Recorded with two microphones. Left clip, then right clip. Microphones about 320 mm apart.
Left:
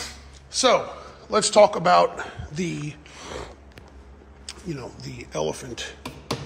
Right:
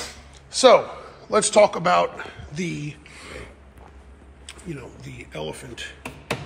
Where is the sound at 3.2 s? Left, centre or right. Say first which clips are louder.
Left 4 dB; left.